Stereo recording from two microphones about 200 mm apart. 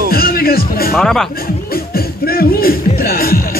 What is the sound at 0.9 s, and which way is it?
Speech, centre (ahead or behind).